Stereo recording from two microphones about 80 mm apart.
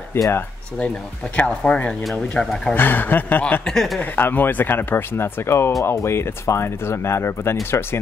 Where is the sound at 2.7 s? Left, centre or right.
Left.